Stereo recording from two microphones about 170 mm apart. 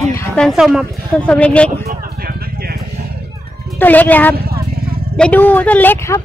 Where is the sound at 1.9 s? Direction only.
65° right (ahead or behind).